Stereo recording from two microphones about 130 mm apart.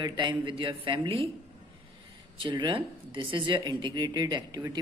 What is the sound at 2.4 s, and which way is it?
A man's voice, 35° right (ahead or behind).